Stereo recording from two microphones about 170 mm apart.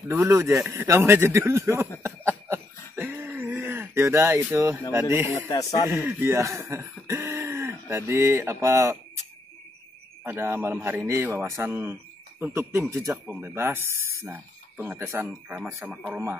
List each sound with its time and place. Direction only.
0.1 s a man's voice: 15° right (ahead or behind)
2.0 s cough: 15° right (ahead or behind)
5.1 s a man's voice: 10° right (ahead or behind)
5.5 s speech: 20° left (ahead or behind)
5.9 s speech: 10° right (ahead or behind)
10.2 s a man's voice: 15° right (ahead or behind)